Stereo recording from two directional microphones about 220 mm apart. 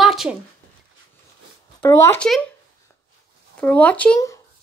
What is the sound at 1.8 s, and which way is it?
Speech, 10° left (ahead or behind).